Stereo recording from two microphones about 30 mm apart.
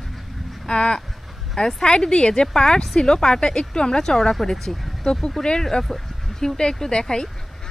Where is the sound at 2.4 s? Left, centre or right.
Centre.